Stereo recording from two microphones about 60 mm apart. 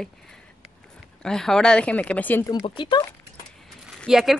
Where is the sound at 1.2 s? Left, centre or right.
Centre; by 2.3 s left.